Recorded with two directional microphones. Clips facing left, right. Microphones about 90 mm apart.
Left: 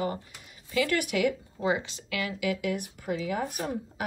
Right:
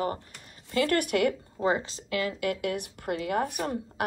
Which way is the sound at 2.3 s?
50° right (ahead or behind).